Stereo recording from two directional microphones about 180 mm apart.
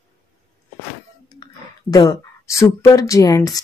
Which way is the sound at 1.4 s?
20° left (ahead or behind).